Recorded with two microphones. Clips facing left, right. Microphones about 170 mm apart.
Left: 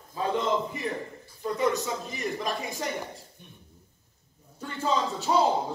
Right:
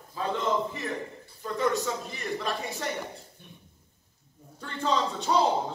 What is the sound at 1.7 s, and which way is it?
Speech, centre (ahead or behind).